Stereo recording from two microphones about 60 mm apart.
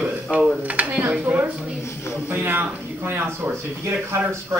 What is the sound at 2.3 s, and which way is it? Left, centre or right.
Speech, right.